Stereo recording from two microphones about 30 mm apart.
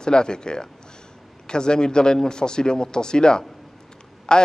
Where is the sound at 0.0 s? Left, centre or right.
Left.